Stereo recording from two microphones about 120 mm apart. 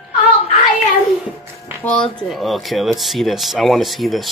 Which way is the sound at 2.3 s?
Centre (ahead or behind).